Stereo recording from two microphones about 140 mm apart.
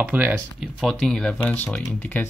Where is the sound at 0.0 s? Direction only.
15° right (ahead or behind).